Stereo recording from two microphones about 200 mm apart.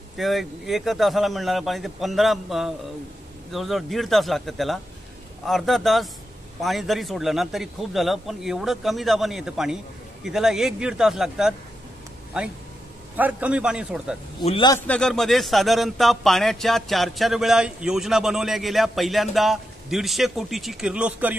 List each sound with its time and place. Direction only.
0.2 s speech: centre (ahead or behind)
13.1 s speech: 10° right (ahead or behind)
14.4 s a man's voice: 25° left (ahead or behind)
14.9 s speech: 5° left (ahead or behind)